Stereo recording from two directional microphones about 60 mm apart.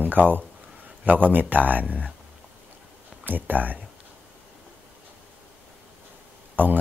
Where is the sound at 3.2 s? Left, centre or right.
Right.